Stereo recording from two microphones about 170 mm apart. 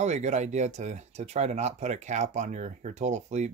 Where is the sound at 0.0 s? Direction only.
45° right (ahead or behind).